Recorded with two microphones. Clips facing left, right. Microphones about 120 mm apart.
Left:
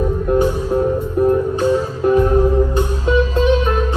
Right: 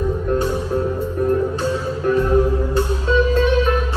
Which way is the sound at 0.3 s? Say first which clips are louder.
Left 5 dB; 20° left (ahead or behind).